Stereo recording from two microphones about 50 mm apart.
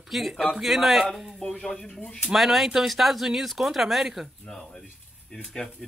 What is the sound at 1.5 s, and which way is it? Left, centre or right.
Speech, centre.